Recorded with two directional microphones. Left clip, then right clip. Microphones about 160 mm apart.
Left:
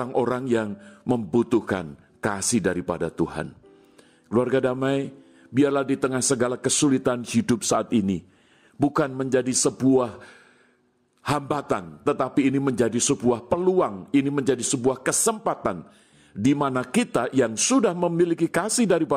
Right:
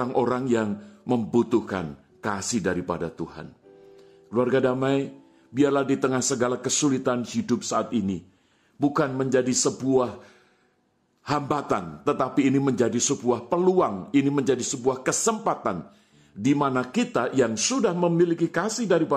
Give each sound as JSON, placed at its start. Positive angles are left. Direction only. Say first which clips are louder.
{"t": 0.0, "sound": "a man's voice", "louder": "even", "side_deg": 40}